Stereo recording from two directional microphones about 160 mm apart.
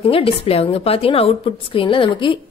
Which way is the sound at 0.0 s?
35° left (ahead or behind).